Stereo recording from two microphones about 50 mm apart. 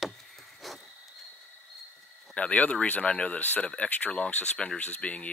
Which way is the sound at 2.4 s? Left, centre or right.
Left.